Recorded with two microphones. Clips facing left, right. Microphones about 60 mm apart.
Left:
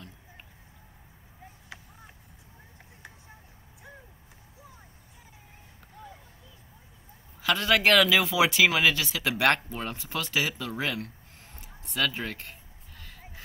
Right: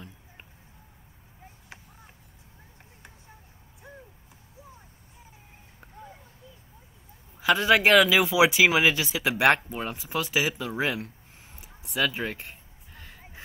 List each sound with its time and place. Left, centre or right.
7.3 s speech: centre